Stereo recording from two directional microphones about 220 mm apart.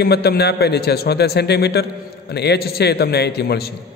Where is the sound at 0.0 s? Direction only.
45° left (ahead or behind).